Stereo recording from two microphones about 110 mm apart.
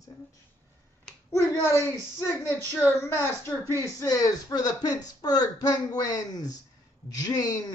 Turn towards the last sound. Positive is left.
turn(degrees=35)  # may be behind; listen again after turning